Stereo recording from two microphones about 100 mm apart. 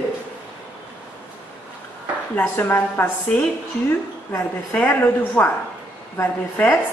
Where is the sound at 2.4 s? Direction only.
20° left (ahead or behind).